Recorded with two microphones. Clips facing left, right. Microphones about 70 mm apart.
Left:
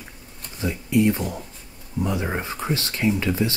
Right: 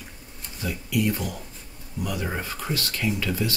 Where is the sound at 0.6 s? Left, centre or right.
Left.